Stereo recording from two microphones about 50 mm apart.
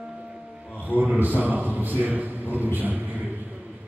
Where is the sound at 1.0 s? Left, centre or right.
Right.